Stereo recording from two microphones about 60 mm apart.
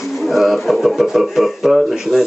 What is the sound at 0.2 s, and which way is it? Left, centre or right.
Speech, centre.